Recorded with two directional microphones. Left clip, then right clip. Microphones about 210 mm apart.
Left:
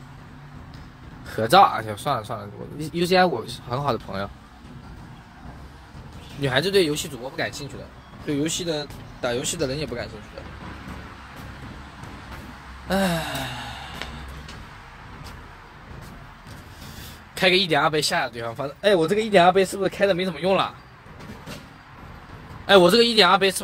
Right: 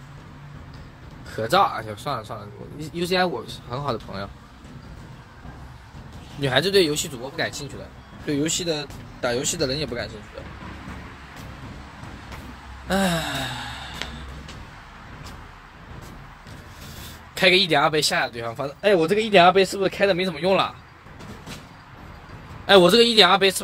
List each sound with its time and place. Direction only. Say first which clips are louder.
1.3 s speech: left 4 dB; 30° left (ahead or behind)
6.4 s speech: right 1 dB; 5° right (ahead or behind)
12.8 s speech: right 1 dB; 5° right (ahead or behind)
14.0 s music: right 3 dB; 5° right (ahead or behind)
17.6 s speech: right 1 dB; 5° right (ahead or behind)
22.7 s speech: right 1 dB; 5° right (ahead or behind)